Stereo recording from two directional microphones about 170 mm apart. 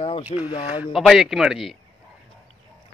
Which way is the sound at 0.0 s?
30° left (ahead or behind).